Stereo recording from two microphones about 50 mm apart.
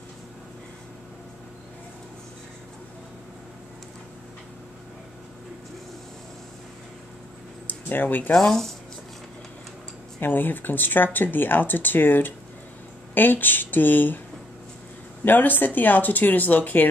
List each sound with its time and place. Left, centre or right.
7.6 s a sound: left
8.4 s speech: centre
10.2 s speech: left
15.2 s speech: left